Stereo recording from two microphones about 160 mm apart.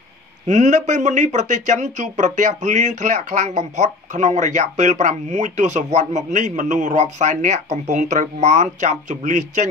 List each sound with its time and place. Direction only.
0.5 s speech: 50° right (ahead or behind)